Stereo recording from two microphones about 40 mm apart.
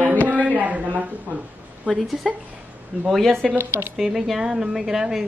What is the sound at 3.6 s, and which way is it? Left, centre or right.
Speech, right.